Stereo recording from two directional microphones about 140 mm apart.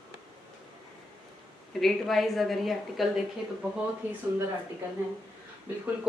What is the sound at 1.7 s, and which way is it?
Speech, centre (ahead or behind).